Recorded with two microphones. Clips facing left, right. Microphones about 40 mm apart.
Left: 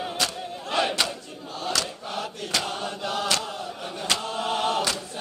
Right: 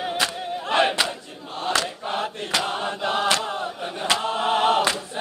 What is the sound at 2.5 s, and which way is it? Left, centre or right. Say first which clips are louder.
Chant: right 3 dB; right.